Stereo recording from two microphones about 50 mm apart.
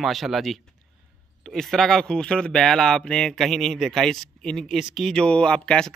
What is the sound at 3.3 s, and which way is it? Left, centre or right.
Speech, centre.